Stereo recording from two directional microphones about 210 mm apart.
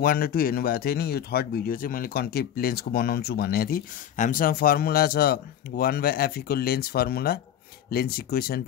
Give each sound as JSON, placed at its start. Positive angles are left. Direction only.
{"t": 0.0, "sound": "speech", "side_deg": 45}